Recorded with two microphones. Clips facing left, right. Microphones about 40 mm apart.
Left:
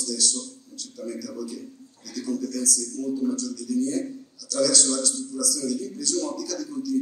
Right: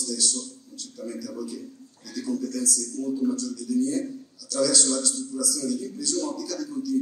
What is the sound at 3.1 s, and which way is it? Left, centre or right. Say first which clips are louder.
A man's voice: right 1 dB; centre.